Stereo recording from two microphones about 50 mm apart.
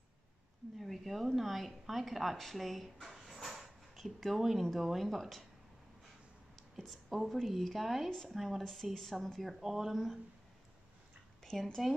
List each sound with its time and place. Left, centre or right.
0.7 s speech: centre
6.8 s speech: centre
8.1 s speech: centre
9.6 s speech: centre
11.4 s speech: centre